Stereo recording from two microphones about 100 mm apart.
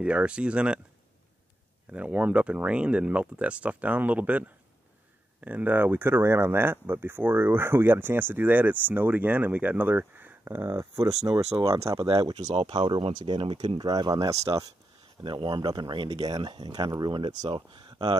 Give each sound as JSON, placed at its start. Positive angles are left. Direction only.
{"t": 0.0, "sound": "speech", "side_deg": -10}
{"t": 1.9, "sound": "speech", "side_deg": -15}
{"t": 12.2, "sound": "speech", "side_deg": -40}
{"t": 12.7, "sound": "speech", "side_deg": -55}
{"t": 15.2, "sound": "speech", "side_deg": -50}
{"t": 17.5, "sound": "speech", "side_deg": -55}